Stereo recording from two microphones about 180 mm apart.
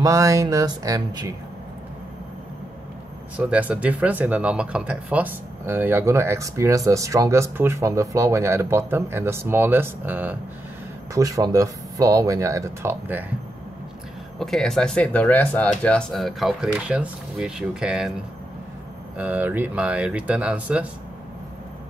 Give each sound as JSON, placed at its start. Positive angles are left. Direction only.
{"t": 0.0, "sound": "speech", "side_deg": -20}
{"t": 3.3, "sound": "speech", "side_deg": -5}
{"t": 14.4, "sound": "speech", "side_deg": 0}
{"t": 19.1, "sound": "speech", "side_deg": -10}